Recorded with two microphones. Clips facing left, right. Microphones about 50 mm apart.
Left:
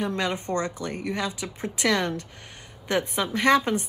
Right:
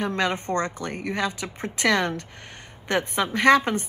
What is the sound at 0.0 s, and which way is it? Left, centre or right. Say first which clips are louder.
A woman's voice: right 2 dB; right.